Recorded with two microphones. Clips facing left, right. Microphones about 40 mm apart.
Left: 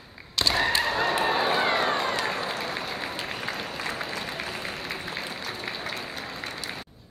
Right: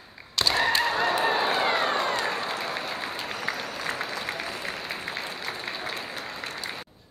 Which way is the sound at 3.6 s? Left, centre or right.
Left.